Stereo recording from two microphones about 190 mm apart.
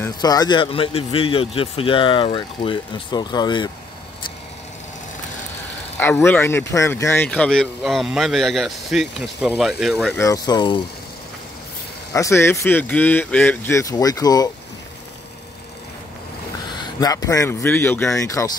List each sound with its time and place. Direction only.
0.0 s speech: 20° left (ahead or behind)
5.9 s speech: 10° left (ahead or behind)
10.1 s speech: 15° left (ahead or behind)
12.1 s speech: 15° left (ahead or behind)
16.7 s speech: 20° left (ahead or behind)